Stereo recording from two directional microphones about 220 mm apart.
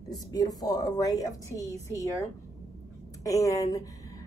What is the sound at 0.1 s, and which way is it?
A woman's voice, 15° left (ahead or behind).